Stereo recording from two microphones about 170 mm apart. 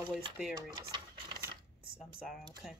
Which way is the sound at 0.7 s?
25° right (ahead or behind).